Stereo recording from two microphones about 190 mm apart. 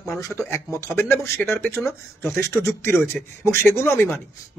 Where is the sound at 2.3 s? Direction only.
15° left (ahead or behind).